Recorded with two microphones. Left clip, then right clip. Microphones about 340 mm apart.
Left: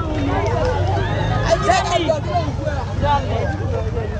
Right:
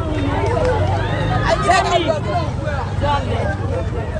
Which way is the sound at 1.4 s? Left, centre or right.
Right.